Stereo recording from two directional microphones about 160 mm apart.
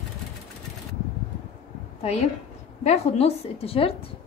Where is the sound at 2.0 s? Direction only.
40° left (ahead or behind).